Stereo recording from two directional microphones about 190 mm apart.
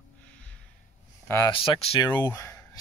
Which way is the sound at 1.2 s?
15° left (ahead or behind).